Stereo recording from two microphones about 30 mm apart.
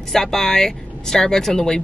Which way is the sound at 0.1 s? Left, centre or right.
Centre.